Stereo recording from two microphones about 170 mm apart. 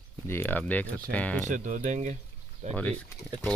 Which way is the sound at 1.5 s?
50° right (ahead or behind).